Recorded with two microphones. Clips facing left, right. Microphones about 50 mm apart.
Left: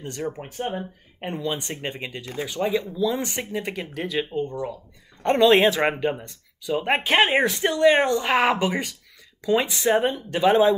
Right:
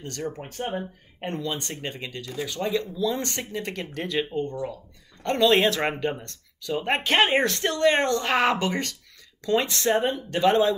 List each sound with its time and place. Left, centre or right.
0.0 s speech: centre
1.5 s speech: left
5.2 s speech: left